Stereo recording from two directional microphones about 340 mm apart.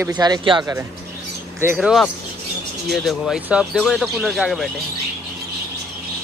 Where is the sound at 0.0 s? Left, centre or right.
Centre.